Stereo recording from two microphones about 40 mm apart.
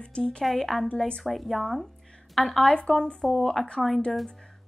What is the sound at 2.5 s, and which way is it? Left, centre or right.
Speech, left.